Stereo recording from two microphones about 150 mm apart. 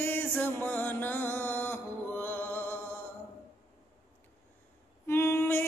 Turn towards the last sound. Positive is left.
turn(degrees=15)  # may be behind; listen again after turning